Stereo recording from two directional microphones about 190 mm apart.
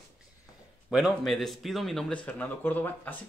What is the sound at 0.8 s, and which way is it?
Speech, centre (ahead or behind).